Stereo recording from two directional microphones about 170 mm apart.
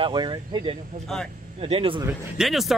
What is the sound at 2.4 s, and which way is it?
Speech, centre (ahead or behind).